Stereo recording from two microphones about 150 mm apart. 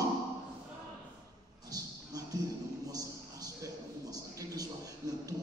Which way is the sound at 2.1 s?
25° right (ahead or behind).